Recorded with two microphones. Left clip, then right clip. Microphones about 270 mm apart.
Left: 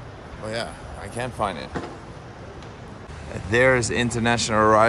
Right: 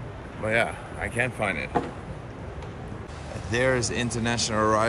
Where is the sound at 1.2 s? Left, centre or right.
Centre.